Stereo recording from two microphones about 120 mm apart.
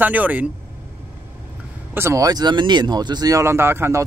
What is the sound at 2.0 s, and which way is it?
Speech, 25° right (ahead or behind).